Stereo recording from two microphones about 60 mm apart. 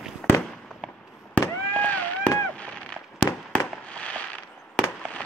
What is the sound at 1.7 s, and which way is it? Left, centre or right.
Fireworks, left.